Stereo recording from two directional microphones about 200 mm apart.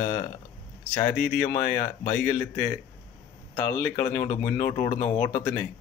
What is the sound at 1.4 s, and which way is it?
A man's voice, 15° left (ahead or behind).